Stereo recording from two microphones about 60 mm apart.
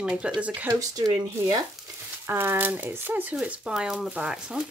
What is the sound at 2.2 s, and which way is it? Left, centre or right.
Speech, right.